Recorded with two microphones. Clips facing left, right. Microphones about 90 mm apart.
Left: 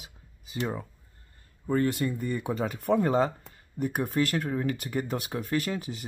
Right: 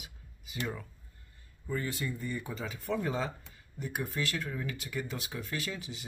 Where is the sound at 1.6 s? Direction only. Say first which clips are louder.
Left 9 dB; 55° left (ahead or behind).